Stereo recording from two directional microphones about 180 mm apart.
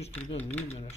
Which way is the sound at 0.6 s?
35° left (ahead or behind).